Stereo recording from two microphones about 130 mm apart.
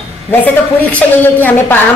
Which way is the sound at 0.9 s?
15° left (ahead or behind).